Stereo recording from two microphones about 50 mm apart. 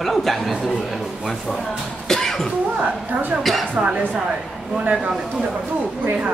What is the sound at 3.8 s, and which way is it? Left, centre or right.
Speech, right.